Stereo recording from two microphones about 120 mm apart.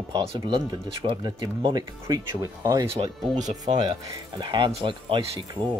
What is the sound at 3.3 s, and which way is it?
Speech, 80° right.